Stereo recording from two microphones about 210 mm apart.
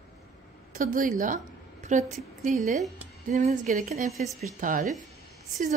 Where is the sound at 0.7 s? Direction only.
40° right (ahead or behind).